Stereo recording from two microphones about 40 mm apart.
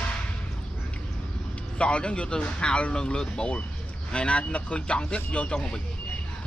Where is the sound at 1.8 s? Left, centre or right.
Left.